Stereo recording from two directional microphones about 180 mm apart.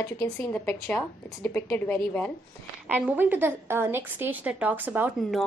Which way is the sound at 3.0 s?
10° right (ahead or behind).